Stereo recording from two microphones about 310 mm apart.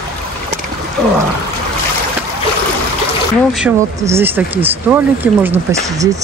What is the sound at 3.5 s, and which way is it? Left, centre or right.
Speech, centre.